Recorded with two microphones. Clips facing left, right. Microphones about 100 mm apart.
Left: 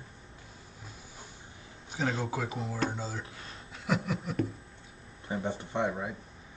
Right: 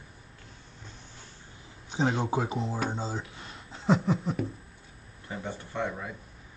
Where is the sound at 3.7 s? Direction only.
25° right (ahead or behind).